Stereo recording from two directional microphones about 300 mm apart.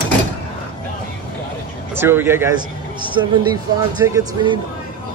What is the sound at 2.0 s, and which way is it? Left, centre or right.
Speech, centre.